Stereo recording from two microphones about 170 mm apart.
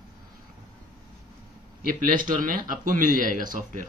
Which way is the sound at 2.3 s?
50° right (ahead or behind).